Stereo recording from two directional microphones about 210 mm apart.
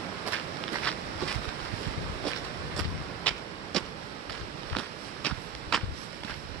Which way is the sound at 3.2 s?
5° left (ahead or behind).